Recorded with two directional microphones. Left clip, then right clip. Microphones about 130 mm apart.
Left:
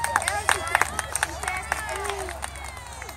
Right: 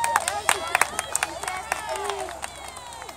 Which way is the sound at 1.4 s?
45° left (ahead or behind).